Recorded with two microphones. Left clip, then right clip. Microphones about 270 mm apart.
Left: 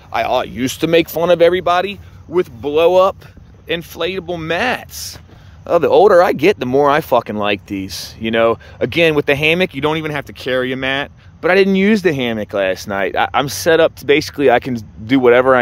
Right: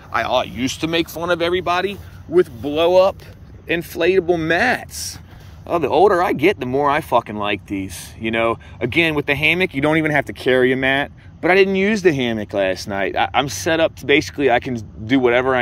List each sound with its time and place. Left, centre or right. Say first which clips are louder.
0.1 s speech: left 2 dB; centre
5.7 s speech: left 5 dB; left; by 11.5 s centre
11.5 s speech: left 2 dB; left
12.2 s speech: left 2 dB; centre